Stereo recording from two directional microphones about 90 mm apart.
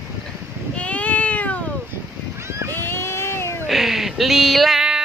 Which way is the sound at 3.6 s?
Centre (ahead or behind).